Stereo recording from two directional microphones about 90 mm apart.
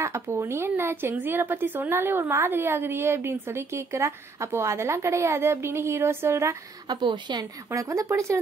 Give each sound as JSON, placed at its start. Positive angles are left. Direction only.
{"t": 0.0, "sound": "a woman's voice", "side_deg": -30}
{"t": 6.9, "sound": "a woman's voice", "side_deg": -55}
{"t": 7.7, "sound": "speech", "side_deg": -35}